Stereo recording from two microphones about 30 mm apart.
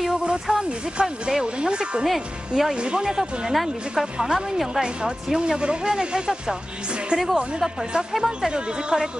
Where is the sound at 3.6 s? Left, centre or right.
Centre.